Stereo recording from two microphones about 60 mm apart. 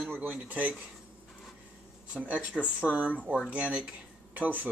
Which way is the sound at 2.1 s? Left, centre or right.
Right.